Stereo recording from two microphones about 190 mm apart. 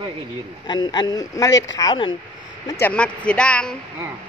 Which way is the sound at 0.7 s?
20° left (ahead or behind).